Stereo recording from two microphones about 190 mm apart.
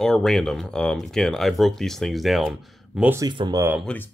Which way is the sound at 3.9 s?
5° left (ahead or behind).